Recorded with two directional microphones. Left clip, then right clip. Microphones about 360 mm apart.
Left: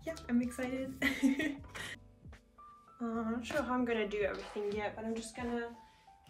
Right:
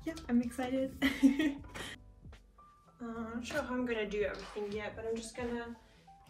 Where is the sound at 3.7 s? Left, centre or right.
Left.